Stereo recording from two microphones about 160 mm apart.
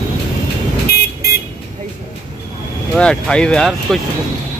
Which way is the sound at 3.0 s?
5° left (ahead or behind).